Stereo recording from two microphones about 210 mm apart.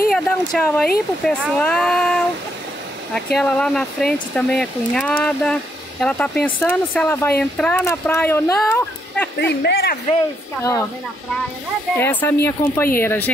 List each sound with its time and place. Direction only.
0.1 s speech: 5° left (ahead or behind)
3.3 s speech: 5° left (ahead or behind)
9.6 s speech: 50° left (ahead or behind)
10.6 s speech: 15° left (ahead or behind)
12.0 s speech: 10° left (ahead or behind)